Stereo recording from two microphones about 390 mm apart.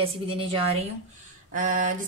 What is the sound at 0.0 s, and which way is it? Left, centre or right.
Speech, centre.